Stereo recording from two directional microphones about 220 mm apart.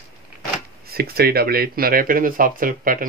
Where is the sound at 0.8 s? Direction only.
45° right (ahead or behind).